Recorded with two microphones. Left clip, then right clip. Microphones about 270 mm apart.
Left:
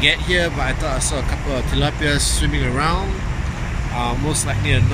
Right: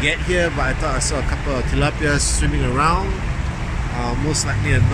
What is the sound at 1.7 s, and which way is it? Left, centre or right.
Speech, centre.